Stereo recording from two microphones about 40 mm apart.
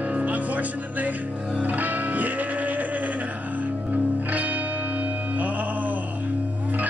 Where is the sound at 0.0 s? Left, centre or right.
Right.